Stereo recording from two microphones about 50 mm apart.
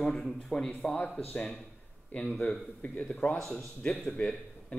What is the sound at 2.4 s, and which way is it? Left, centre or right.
A man's voice, left.